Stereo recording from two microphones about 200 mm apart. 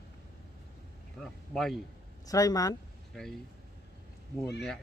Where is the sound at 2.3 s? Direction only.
15° left (ahead or behind).